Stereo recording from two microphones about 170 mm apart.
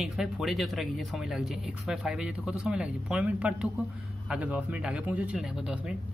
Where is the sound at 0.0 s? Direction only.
Centre (ahead or behind).